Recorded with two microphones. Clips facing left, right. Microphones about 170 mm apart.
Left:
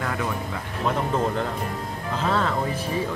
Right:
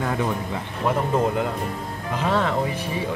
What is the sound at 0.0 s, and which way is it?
Speech, 25° right (ahead or behind).